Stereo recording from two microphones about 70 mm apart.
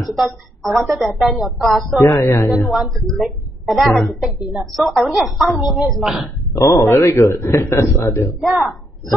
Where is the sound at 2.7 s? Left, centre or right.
Centre.